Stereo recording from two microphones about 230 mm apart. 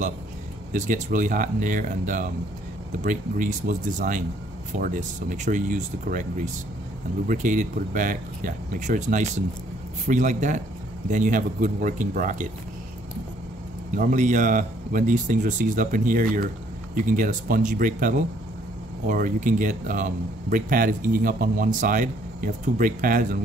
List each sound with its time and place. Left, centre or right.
0.7 s speech: right
13.9 s speech: right